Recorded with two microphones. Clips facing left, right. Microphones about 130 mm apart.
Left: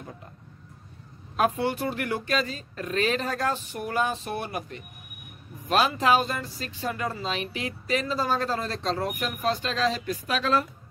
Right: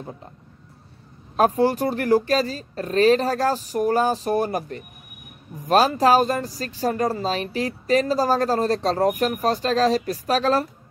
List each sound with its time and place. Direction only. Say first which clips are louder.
1.3 s speech: right 6 dB; 35° right (ahead or behind)